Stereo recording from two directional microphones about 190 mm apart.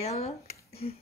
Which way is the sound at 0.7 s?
30° left (ahead or behind).